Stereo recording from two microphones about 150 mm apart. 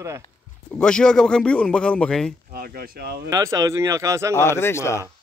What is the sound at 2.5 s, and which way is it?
Speech, 75° right (ahead or behind).